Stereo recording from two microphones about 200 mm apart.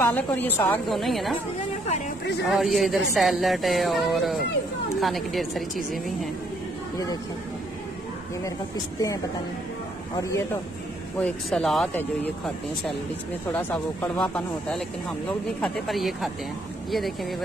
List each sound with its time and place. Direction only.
0.0 s a woman's voice: 10° left (ahead or behind)
2.4 s speech: centre (ahead or behind)
10.1 s a woman's voice: 15° left (ahead or behind)
11.1 s speech: 5° left (ahead or behind)
13.5 s speech: 10° left (ahead or behind)